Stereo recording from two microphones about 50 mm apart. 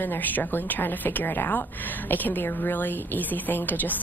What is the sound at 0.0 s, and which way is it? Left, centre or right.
A woman's voice, left.